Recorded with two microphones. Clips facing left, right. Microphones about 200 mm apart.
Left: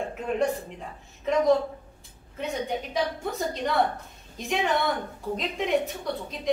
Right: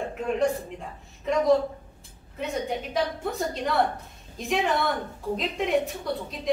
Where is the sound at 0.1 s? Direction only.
Centre (ahead or behind).